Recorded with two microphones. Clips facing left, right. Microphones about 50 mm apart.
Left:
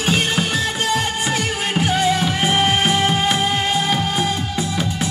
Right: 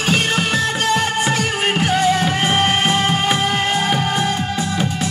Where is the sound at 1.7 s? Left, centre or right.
Right.